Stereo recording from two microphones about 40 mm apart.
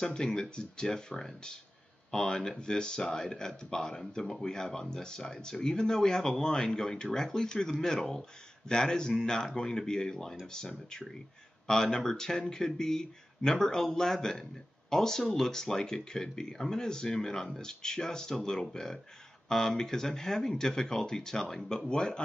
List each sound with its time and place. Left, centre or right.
0.0 s speech: centre